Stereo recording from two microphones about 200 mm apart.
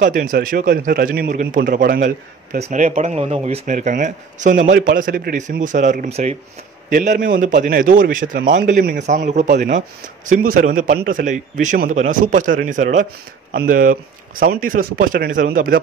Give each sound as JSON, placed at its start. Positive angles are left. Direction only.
{"t": 0.0, "sound": "a man's voice", "side_deg": -40}